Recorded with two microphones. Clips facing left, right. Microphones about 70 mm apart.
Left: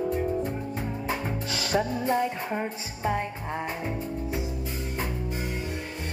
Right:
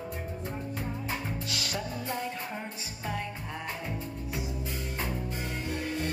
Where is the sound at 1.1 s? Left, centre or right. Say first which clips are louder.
Left 5 dB; left.